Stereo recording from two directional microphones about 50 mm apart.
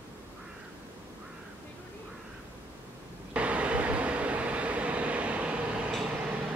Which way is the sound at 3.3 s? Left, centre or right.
Right.